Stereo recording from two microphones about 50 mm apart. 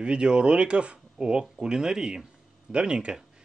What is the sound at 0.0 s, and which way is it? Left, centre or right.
Speech, centre.